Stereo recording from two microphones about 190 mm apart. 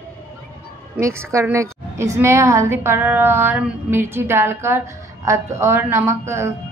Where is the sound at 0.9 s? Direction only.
15° right (ahead or behind).